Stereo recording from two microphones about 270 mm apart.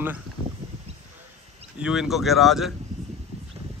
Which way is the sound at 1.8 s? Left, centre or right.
Centre.